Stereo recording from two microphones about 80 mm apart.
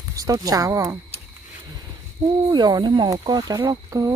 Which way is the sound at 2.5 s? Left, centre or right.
Right.